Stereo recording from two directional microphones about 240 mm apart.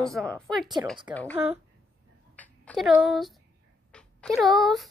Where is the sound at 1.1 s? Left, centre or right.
Centre.